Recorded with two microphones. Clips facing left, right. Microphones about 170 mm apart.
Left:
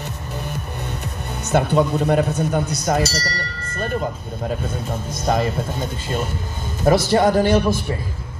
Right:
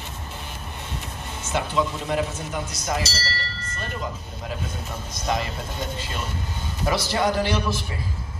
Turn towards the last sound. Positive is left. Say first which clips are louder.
# left 8 dB
turn(degrees=50)  # may be behind; listen again after turning